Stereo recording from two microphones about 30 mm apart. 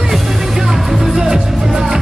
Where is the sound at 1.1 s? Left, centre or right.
Right.